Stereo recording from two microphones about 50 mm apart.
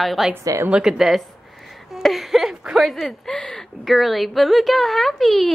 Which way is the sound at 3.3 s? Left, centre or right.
Centre.